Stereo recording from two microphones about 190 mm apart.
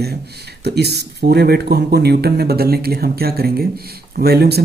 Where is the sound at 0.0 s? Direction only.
60° right (ahead or behind).